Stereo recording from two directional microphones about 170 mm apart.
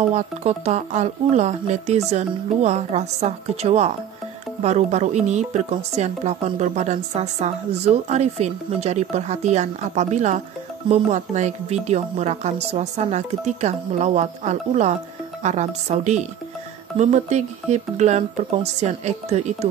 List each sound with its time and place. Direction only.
0.1 s speech: 40° right (ahead or behind)